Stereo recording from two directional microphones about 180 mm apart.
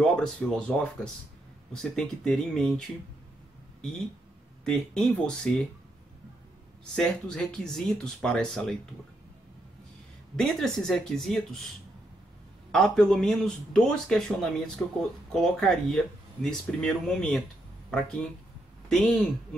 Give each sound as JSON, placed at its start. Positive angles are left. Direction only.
{"t": 0.0, "sound": "a man's voice", "side_deg": 5}
{"t": 4.6, "sound": "a man's voice", "side_deg": 5}
{"t": 7.0, "sound": "a man's voice", "side_deg": 5}
{"t": 10.3, "sound": "a man's voice", "side_deg": 0}
{"t": 12.7, "sound": "a man's voice", "side_deg": 5}
{"t": 18.9, "sound": "a man's voice", "side_deg": 5}